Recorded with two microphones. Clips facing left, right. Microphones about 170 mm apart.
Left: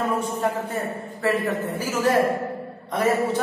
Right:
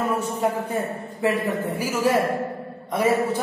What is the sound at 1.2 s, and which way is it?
Mantra, 10° right (ahead or behind).